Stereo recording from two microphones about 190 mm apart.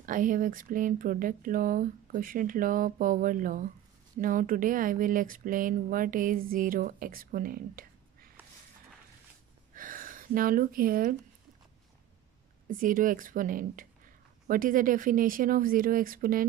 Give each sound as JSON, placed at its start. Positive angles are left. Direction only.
{"t": 0.0, "sound": "speech", "side_deg": -45}
{"t": 9.8, "sound": "gasp", "side_deg": -45}
{"t": 12.6, "sound": "speech", "side_deg": -45}